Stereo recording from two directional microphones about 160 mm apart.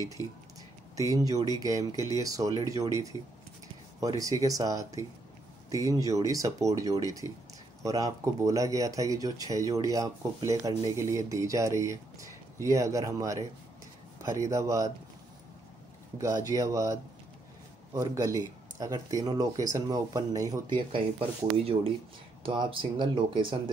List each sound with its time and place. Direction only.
0.0 s speech: 20° left (ahead or behind)
1.1 s speech: 20° right (ahead or behind)
16.4 s speech: 20° right (ahead or behind)
21.5 s speech: 35° right (ahead or behind)